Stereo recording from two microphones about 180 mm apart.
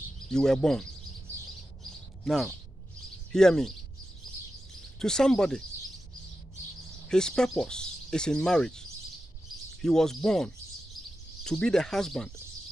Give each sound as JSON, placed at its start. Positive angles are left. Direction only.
{"t": 0.3, "sound": "speech", "side_deg": 5}
{"t": 2.2, "sound": "speech", "side_deg": 0}
{"t": 4.9, "sound": "speech", "side_deg": 5}
{"t": 7.1, "sound": "speech", "side_deg": 5}